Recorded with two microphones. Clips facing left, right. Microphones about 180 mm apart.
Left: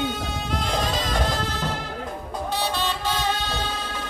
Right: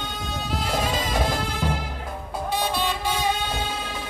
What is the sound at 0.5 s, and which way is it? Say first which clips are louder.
Music: even; 5° right (ahead or behind).